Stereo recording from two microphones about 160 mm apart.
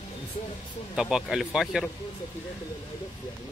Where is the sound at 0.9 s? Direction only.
5° right (ahead or behind).